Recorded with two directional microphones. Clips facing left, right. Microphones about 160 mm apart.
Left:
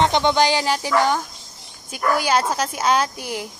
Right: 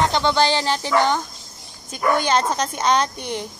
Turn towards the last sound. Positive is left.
turn(degrees=5)  # may be behind; listen again after turning